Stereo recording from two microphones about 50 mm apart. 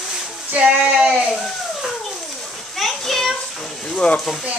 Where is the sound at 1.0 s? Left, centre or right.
Centre.